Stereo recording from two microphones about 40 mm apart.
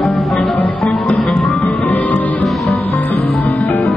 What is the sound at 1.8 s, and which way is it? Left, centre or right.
Music, left.